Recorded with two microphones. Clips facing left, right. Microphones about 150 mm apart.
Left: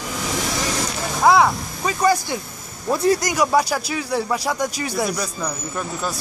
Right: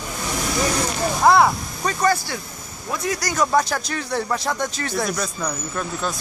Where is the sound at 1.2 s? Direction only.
Centre (ahead or behind).